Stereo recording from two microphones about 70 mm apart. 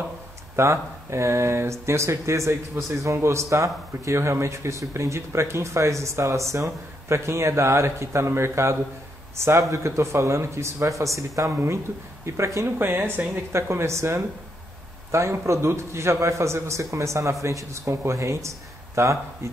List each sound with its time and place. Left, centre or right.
0.6 s speech: right
12.6 s speech: right